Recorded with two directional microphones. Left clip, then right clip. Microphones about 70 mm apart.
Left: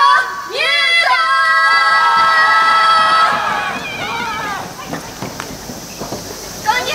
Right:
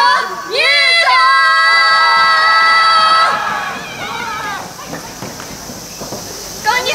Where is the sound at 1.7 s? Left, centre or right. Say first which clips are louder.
Right 2 dB; right.